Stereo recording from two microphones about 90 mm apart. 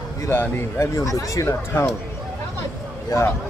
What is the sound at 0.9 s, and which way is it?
Speech, 35° left (ahead or behind).